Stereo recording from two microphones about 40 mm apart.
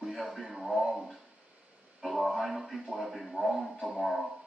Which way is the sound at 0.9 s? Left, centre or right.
Centre.